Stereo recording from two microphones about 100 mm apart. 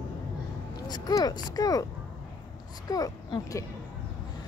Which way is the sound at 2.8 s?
35° left (ahead or behind).